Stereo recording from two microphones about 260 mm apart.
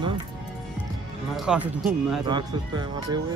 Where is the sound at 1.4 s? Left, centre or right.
Centre.